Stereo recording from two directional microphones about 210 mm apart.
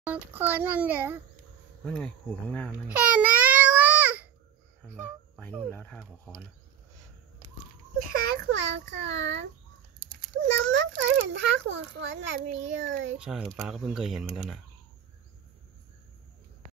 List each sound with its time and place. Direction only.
0.0 s a child's voice: 10° right (ahead or behind)
1.9 s speech: 5° left (ahead or behind)
2.9 s babbling: 5° right (ahead or behind)
5.7 s speech: 5° left (ahead or behind)
8.1 s a child's voice: 45° right (ahead or behind); by 13.2 s 60° right (ahead or behind)
13.2 s speech: 5° right (ahead or behind)